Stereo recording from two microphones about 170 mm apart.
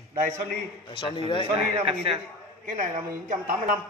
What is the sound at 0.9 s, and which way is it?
Speech, 25° left (ahead or behind).